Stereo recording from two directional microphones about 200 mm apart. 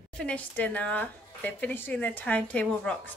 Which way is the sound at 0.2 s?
5° left (ahead or behind).